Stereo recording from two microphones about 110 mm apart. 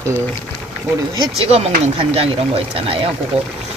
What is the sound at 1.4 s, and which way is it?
Speech, 70° right (ahead or behind).